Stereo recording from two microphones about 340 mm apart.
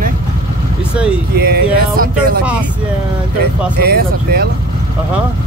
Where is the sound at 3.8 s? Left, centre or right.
Right.